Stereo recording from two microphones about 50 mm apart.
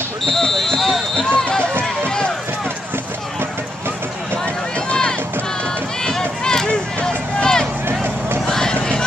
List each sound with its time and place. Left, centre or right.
0.2 s fire alarm: centre
1.3 s run: left
4.7 s run: left
7.0 s a sound: centre
8.5 s run: centre